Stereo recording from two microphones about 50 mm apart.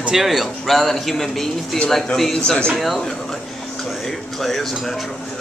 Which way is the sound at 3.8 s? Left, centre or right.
Centre.